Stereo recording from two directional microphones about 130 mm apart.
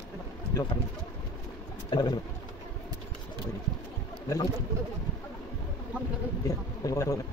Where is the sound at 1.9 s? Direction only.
35° left (ahead or behind).